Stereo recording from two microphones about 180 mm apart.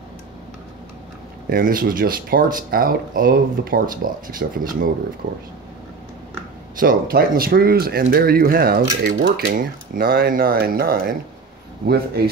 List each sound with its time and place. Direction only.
1.5 s speech: 50° right (ahead or behind)
6.8 s speech: 55° right (ahead or behind)
9.6 s speech: 55° right (ahead or behind)
12.2 s speech: 60° right (ahead or behind)